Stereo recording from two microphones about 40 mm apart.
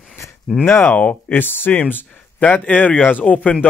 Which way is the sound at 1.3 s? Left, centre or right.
Left.